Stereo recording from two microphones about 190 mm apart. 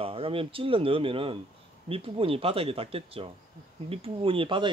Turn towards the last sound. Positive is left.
turn(degrees=-25)  # may be behind; listen again after turning